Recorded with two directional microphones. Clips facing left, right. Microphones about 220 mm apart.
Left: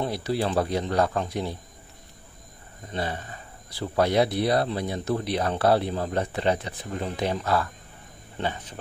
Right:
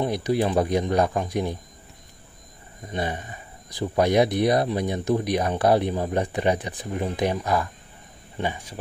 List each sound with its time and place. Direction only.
0.0 s speech: 15° right (ahead or behind)
2.9 s speech: 15° right (ahead or behind)